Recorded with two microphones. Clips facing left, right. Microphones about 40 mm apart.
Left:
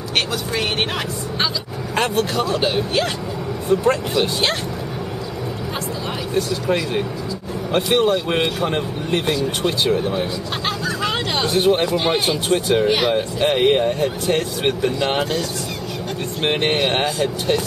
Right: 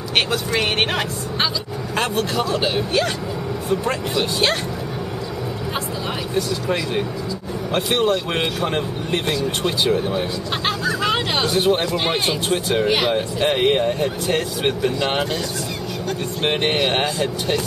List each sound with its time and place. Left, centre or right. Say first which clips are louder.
0.3 s speech: right 2 dB; right
2.0 s speech: left 2 dB; centre
6.3 s speech: left 3 dB; centre
10.9 s vehicle: right 3 dB; centre
11.5 s speech: left 3 dB; centre
16.4 s speech: left 1 dB; centre